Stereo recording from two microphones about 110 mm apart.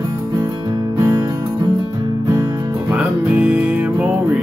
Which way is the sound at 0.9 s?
35° right (ahead or behind).